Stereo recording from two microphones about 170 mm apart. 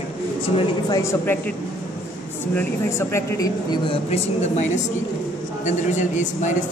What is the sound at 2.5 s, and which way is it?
A man's voice, 15° left (ahead or behind).